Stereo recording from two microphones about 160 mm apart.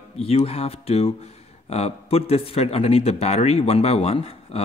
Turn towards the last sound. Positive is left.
turn(degrees=35)  # may be behind; listen again after turning